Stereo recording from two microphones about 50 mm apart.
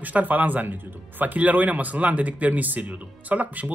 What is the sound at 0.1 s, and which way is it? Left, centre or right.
Speech, right.